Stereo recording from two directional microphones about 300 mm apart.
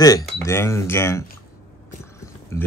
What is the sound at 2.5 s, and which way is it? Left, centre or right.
Speech, centre.